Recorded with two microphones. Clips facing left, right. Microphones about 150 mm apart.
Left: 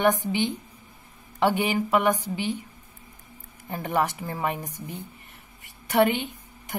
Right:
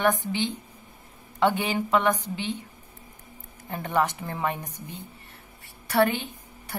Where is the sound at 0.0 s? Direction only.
15° left (ahead or behind).